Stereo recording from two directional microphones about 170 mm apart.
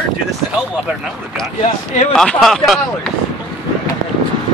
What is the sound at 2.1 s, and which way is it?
Speech, 5° left (ahead or behind).